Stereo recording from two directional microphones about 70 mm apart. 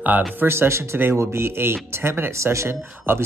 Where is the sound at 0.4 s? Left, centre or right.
Right.